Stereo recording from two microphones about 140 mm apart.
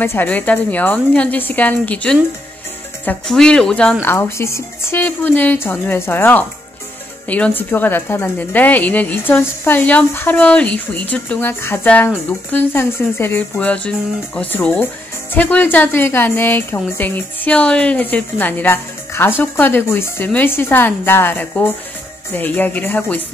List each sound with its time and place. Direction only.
0.0 s a woman's voice: 15° left (ahead or behind)
4.1 s a woman's voice: 20° left (ahead or behind)